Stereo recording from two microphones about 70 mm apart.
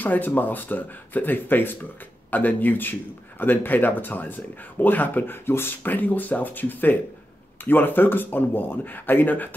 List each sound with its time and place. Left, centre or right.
0.0 s a man's voice: left